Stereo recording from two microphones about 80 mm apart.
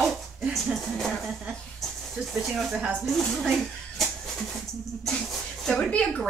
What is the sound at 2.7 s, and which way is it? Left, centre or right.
Speech, centre.